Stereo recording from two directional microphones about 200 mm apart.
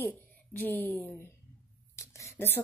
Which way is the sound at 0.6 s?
10° left (ahead or behind).